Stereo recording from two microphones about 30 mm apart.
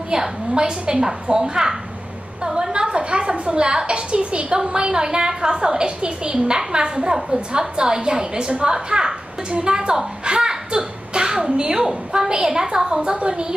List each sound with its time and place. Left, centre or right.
0.1 s a woman's voice: right
10.2 s a sound: right
12.1 s a woman's voice: right